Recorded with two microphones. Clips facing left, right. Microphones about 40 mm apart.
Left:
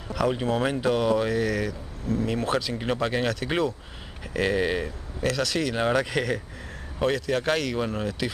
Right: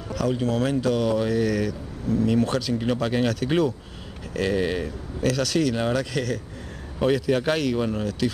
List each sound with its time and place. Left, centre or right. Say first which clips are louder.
0.1 s speech: even; left
1.0 s speech: right 1 dB; centre
7.0 s speech: right 3 dB; centre
8.0 s speech: right 3 dB; centre